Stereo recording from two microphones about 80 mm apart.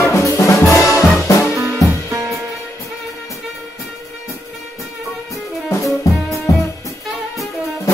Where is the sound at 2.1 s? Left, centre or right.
Right.